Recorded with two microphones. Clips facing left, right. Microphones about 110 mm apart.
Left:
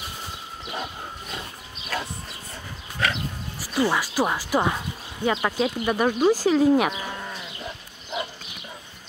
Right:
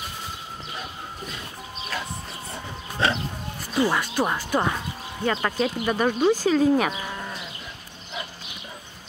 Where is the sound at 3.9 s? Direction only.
5° left (ahead or behind).